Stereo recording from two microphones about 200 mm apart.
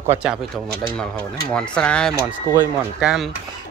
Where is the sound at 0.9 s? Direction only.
5° left (ahead or behind).